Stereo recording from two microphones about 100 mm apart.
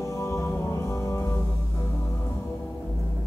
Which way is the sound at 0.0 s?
30° left (ahead or behind).